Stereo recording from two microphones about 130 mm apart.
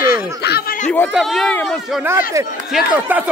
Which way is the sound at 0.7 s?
75° left (ahead or behind).